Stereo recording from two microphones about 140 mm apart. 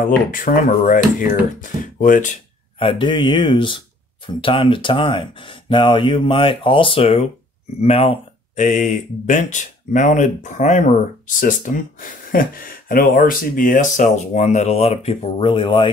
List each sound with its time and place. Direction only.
0.0 s speech: 85° left
2.8 s speech: 35° left (ahead or behind); by 10.9 s 60° left (ahead or behind)
11.3 s speech: 70° left (ahead or behind)
13.9 s speech: 60° left (ahead or behind); by 15.9 s 40° left (ahead or behind)